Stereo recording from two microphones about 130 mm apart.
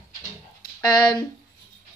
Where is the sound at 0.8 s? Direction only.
30° left (ahead or behind).